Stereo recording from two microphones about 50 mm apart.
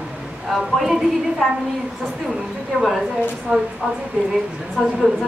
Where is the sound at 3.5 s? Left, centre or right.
Right.